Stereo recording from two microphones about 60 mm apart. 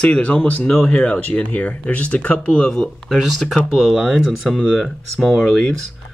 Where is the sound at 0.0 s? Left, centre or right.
Centre.